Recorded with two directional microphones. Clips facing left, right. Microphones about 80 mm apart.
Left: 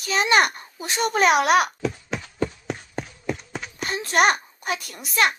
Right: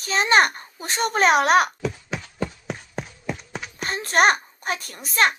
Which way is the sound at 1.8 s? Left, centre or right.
Centre.